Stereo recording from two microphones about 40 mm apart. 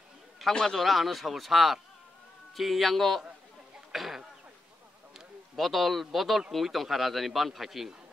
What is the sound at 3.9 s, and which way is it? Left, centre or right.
Cough, centre.